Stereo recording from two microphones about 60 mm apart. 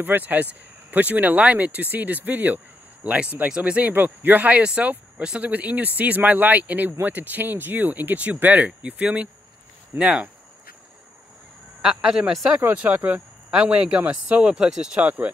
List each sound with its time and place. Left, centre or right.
0.0 s speech: right
3.9 s speech: right; by 5.5 s centre
5.5 s a man's voice: right
11.8 s a man's voice: centre
12.5 s speech: right
14.4 s a man's voice: centre
15.0 s speech: right